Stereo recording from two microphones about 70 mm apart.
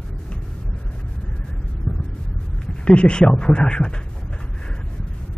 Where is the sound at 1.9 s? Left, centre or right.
Left.